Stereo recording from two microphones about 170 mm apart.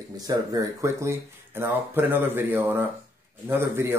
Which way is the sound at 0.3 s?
20° right (ahead or behind).